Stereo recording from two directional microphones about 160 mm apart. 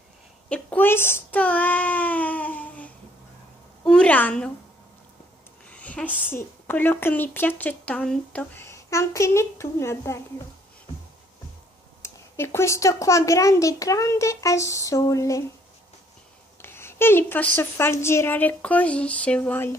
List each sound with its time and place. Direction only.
0.5 s child singing: 10° left (ahead or behind)
3.8 s a woman's voice: 5° left (ahead or behind)
5.7 s a sound: 10° left (ahead or behind)
6.2 s a woman's voice: 10° left (ahead or behind)
12.0 s a child's voice: 15° left (ahead or behind)
16.6 s a sound: 15° left (ahead or behind)
17.6 s a woman's voice: 15° left (ahead or behind)